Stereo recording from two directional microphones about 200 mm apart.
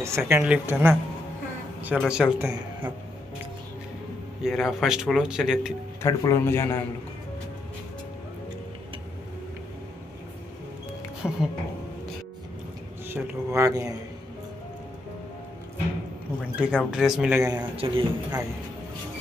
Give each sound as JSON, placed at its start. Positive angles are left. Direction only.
{"t": 0.3, "sound": "speech", "side_deg": -10}
{"t": 4.4, "sound": "speech", "side_deg": 0}
{"t": 6.0, "sound": "speech", "side_deg": 15}
{"t": 11.2, "sound": "music", "side_deg": 5}
{"t": 13.1, "sound": "speech", "side_deg": -10}
{"t": 16.3, "sound": "speech", "side_deg": -5}
{"t": 17.4, "sound": "speech", "side_deg": -15}
{"t": 17.7, "sound": "a man's voice", "side_deg": -25}